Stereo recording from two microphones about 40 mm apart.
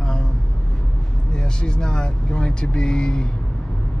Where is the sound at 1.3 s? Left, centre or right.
Left.